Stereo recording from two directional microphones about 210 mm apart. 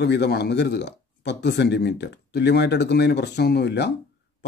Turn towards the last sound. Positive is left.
turn(degrees=55)  # may be behind; listen again after turning